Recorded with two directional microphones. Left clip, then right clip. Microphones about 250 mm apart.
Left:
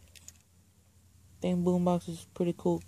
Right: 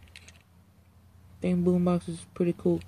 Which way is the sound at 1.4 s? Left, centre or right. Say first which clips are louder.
Right 2 dB; centre.